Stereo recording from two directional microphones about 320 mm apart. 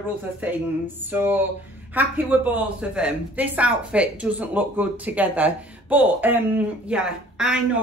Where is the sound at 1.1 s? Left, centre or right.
Centre.